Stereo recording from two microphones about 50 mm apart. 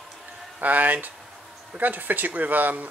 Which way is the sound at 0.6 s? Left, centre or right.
Right.